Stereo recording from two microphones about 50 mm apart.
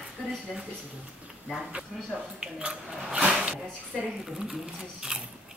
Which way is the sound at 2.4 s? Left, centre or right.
Centre.